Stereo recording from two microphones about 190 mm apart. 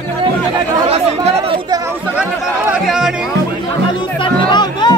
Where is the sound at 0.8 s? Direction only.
30° right (ahead or behind).